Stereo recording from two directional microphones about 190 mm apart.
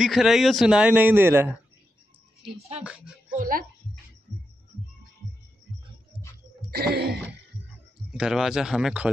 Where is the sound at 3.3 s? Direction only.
50° right (ahead or behind).